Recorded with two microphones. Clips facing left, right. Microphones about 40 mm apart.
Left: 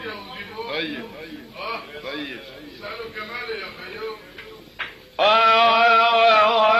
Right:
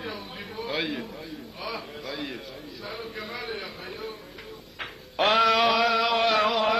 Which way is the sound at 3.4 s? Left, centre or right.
Left.